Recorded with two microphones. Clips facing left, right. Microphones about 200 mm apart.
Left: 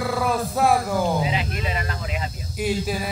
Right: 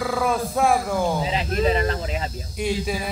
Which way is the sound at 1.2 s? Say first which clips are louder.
Right 4 dB; 35° right (ahead or behind).